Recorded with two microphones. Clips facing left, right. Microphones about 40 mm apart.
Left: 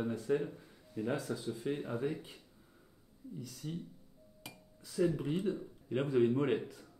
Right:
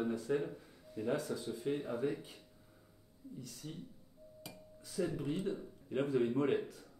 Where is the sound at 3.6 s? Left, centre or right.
Centre.